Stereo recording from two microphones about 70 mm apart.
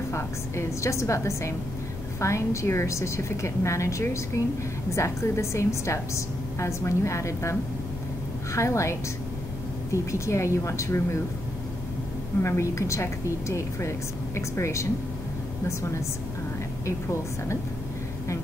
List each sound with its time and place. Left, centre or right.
0.1 s a woman's voice: left
8.5 s a woman's voice: left
10.1 s a woman's voice: left
12.4 s a woman's voice: left
16.8 s a woman's voice: left